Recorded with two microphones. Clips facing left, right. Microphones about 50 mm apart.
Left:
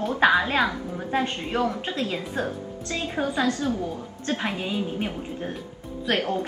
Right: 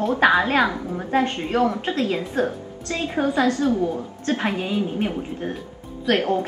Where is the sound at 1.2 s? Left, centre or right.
Right.